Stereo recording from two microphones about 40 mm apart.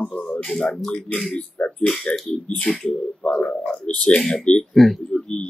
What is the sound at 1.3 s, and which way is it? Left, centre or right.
Speech, left.